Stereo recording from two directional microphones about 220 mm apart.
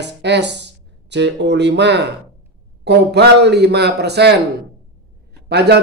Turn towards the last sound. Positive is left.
turn(degrees=-50)  # may be behind; listen again after turning